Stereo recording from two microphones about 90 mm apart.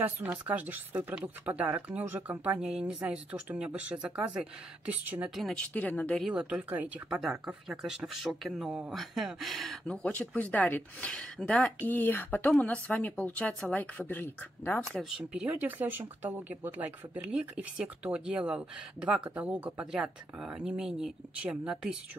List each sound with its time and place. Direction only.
0.0 s speech: 20° right (ahead or behind)
5.3 s speech: centre (ahead or behind)
5.6 s speech: 20° left (ahead or behind)
6.3 s speech: 15° right (ahead or behind)
7.1 s speech: 5° right (ahead or behind)
8.9 s speech: centre (ahead or behind)
10.1 s speech: 15° left (ahead or behind)
15.0 s speech: 5° right (ahead or behind)
15.4 s speech: 20° right (ahead or behind)